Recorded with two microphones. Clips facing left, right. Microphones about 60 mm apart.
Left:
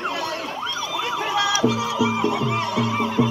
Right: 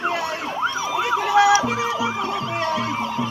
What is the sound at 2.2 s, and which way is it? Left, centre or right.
Music, left.